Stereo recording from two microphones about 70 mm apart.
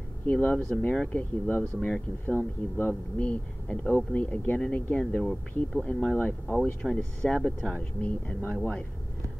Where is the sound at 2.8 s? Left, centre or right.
Left.